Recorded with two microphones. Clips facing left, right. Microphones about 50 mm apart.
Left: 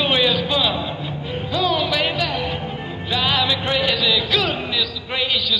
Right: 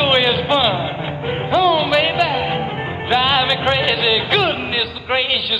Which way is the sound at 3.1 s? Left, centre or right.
Right.